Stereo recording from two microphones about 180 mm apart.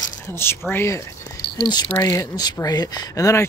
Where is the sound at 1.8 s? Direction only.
10° left (ahead or behind).